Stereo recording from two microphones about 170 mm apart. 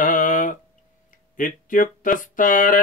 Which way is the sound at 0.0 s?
50° left (ahead or behind).